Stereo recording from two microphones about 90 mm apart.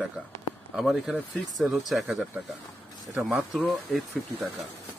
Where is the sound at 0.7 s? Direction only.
Centre (ahead or behind).